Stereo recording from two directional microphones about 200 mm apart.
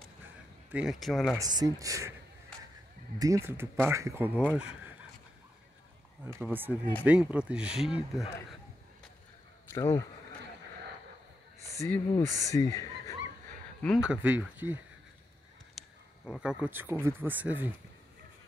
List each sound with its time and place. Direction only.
0.7 s speech: 5° right (ahead or behind)
1.4 s speech: 20° right (ahead or behind)
3.2 s speech: 15° right (ahead or behind)
6.2 s speech: 10° right (ahead or behind)
9.7 s speech: 15° left (ahead or behind)
11.7 s speech: 15° left (ahead or behind)
13.8 s speech: 5° right (ahead or behind)
15.8 s a sound: centre (ahead or behind)
16.3 s speech: 5° right (ahead or behind)